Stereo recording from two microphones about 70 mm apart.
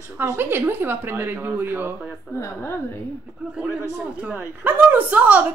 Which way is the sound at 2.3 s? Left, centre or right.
Left.